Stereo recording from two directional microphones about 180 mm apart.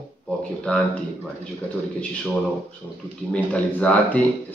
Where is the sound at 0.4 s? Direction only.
5° left (ahead or behind).